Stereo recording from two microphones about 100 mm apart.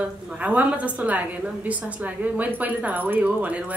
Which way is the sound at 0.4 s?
15° right (ahead or behind).